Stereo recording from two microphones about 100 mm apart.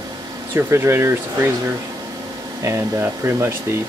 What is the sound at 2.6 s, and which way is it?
Speech, 25° right (ahead or behind).